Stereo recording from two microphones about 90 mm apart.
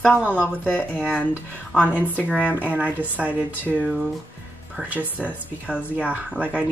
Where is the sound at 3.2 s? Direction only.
5° right (ahead or behind).